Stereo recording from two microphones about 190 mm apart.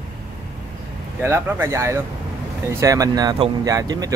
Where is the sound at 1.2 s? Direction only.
10° right (ahead or behind).